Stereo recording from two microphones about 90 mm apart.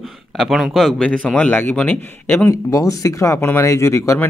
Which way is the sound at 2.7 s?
40° left (ahead or behind).